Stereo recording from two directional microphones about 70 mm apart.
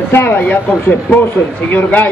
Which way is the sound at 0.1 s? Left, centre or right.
Left.